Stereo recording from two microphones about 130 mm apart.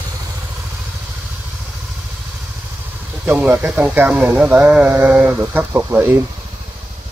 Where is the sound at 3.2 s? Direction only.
10° right (ahead or behind).